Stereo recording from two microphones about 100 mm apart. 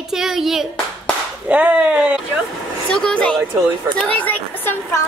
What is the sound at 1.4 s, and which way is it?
Dog, 10° right (ahead or behind).